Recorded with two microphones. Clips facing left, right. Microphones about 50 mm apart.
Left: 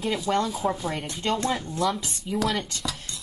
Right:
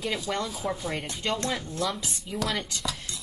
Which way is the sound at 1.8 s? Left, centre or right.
Centre.